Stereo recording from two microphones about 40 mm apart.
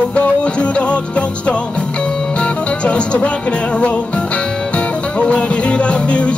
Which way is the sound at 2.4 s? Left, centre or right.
Left.